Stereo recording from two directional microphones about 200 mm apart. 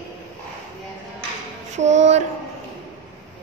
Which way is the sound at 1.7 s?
35° right (ahead or behind).